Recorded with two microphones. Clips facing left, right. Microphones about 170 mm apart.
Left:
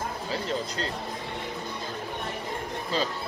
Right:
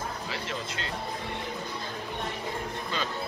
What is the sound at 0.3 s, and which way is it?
Speech, 35° left (ahead or behind).